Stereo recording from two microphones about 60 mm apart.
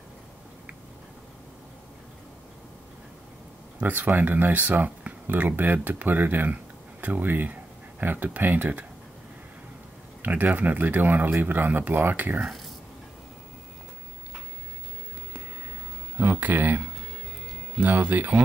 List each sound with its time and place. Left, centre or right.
3.8 s speech: right
10.2 s speech: right
16.3 s speech: right